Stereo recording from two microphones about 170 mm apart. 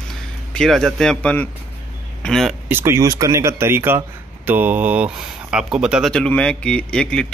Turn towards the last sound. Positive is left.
turn(degrees=5)  # may be behind; listen again after turning